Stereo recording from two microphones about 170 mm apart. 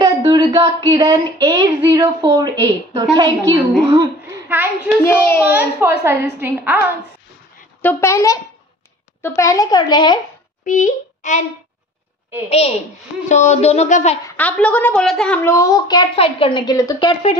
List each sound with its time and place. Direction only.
0.0 s a woman's voice: 25° right (ahead or behind)
4.8 s a woman's voice: 15° left (ahead or behind)
5.5 s a woman's voice: 10° right (ahead or behind)
7.8 s a woman's voice: 15° left (ahead or behind)
10.6 s a child's voice: 50° left (ahead or behind)
12.4 s speech: 35° left (ahead or behind)
14.2 s a woman's voice: 10° left (ahead or behind)